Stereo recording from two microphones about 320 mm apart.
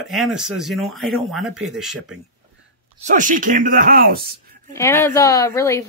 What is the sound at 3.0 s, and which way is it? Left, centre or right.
Speech, right.